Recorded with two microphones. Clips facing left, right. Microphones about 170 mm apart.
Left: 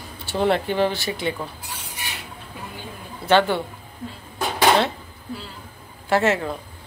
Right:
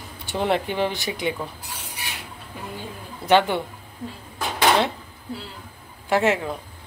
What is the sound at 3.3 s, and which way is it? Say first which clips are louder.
Speech: even; 15° right (ahead or behind).